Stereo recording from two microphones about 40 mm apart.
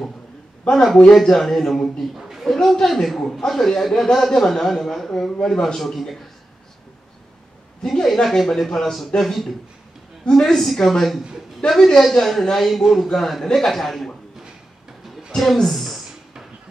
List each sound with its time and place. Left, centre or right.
0.7 s speech: left
1.2 s a man's voice: centre
2.1 s a woman's voice: centre
7.8 s a man's voice: centre
10.2 s a man's voice: centre
15.3 s a woman's voice: centre